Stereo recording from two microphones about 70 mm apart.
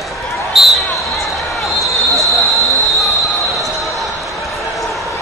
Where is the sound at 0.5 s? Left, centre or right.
Centre.